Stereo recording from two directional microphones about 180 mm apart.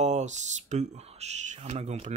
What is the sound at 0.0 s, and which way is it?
Speech, 40° right (ahead or behind).